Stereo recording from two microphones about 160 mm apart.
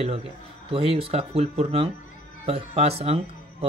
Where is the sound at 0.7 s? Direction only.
35° right (ahead or behind).